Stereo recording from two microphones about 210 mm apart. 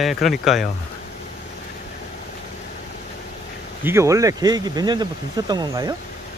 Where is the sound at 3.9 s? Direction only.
15° right (ahead or behind).